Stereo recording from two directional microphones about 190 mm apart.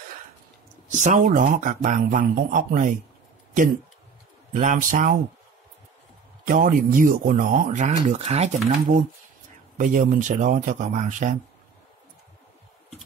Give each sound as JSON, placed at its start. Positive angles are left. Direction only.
{"t": 0.9, "sound": "speech", "side_deg": -40}
{"t": 4.6, "sound": "speech", "side_deg": -45}
{"t": 6.4, "sound": "speech", "side_deg": -45}